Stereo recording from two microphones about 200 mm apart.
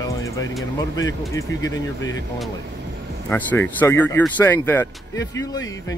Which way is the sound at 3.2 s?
10° left (ahead or behind).